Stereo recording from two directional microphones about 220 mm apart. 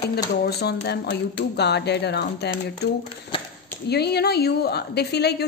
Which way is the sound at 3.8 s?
50° left (ahead or behind).